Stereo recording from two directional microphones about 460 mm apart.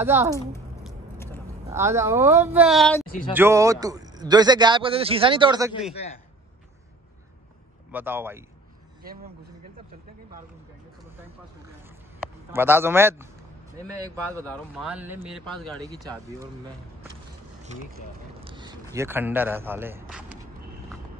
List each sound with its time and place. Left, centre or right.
0.0 s speech: centre
0.5 s a sound: centre
1.7 s speech: centre
7.9 s speech: centre
9.0 s speech: centre
12.5 s speech: centre
14.3 s speech: centre
18.4 s a man's voice: centre